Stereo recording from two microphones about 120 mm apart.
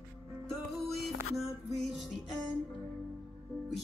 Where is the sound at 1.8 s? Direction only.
Centre (ahead or behind).